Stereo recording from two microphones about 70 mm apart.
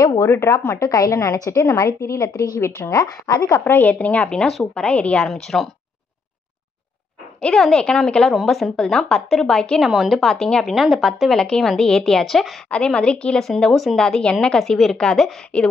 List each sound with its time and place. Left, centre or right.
0.2 s a woman's voice: left
0.8 s a woman's voice: left
3.6 s speech: left
4.5 s speech: centre
4.8 s a woman's voice: centre
5.3 s speech: centre
7.4 s a woman's voice: centre
12.6 s a woman's voice: centre
15.5 s a woman's voice: centre